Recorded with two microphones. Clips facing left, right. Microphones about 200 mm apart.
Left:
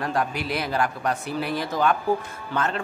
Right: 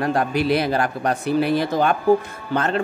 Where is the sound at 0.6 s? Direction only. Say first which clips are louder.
Right 4 dB; 65° right (ahead or behind).